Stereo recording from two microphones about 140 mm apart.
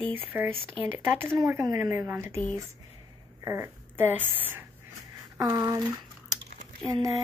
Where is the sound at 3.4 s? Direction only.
20° right (ahead or behind).